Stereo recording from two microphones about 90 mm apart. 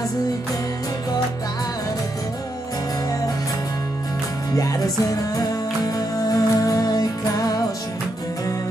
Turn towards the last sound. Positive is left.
turn(degrees=45)  # may be behind; listen again after turning